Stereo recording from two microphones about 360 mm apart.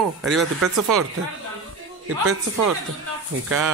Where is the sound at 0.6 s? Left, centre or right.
Right.